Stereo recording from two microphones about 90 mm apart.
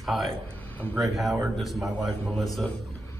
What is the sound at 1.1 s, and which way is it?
A man's voice, centre (ahead or behind).